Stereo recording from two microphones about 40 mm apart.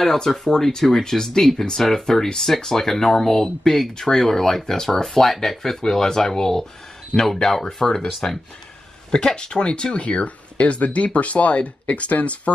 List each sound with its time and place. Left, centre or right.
0.0 s speech: centre; by 12.4 s left